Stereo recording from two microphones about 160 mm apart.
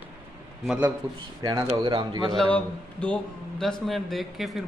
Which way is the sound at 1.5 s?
25° right (ahead or behind).